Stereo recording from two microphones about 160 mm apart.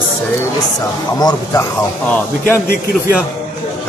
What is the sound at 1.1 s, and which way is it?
Speech, 20° left (ahead or behind).